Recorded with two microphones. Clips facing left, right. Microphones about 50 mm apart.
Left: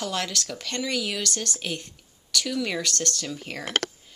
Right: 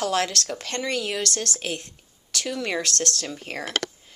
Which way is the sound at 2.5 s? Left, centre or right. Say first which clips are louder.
Right 3 dB; right.